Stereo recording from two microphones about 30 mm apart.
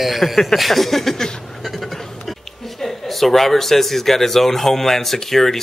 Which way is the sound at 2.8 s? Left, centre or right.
Centre.